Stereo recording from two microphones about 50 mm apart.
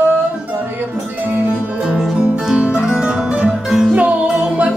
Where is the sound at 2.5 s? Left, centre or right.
Centre.